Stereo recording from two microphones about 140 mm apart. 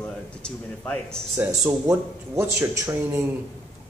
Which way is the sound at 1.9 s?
20° right (ahead or behind).